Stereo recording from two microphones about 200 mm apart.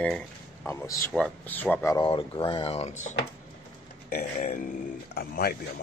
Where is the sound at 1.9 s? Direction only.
25° left (ahead or behind).